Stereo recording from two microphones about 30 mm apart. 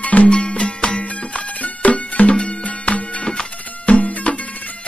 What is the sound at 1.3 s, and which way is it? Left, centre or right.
Music, left.